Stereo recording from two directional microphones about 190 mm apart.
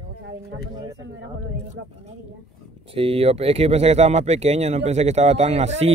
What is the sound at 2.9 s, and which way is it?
Speech, 30° right (ahead or behind).